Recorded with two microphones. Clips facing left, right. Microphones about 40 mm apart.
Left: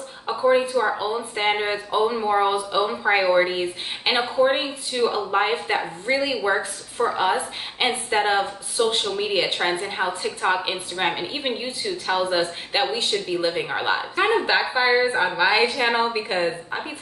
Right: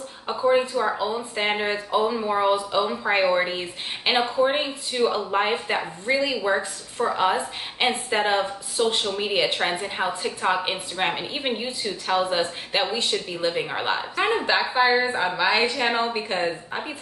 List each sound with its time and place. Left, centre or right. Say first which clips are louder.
0.3 s a woman's voice: left 2 dB; centre
9.1 s a woman's voice: even; centre